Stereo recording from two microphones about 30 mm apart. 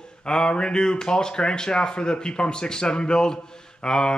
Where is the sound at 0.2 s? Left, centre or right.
Left.